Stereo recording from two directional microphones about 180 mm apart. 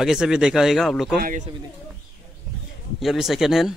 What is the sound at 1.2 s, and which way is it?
Speech, 50° right (ahead or behind).